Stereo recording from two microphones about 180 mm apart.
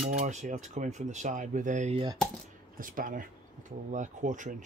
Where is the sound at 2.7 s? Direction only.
50° right (ahead or behind).